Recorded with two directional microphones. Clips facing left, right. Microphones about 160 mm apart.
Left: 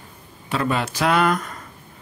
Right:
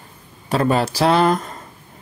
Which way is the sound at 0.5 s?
40° right (ahead or behind).